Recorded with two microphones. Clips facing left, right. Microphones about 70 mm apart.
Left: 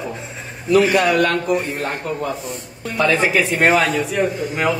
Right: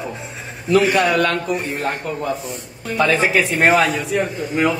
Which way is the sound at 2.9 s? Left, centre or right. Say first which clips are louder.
Even; right.